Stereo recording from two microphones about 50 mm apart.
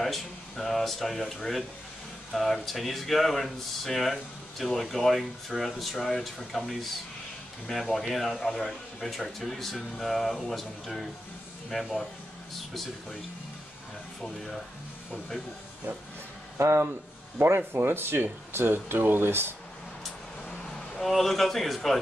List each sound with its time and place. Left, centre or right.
0.0 s speech: centre
16.5 s speech: right
17.4 s speech: right
17.7 s speech: right
21.0 s speech: centre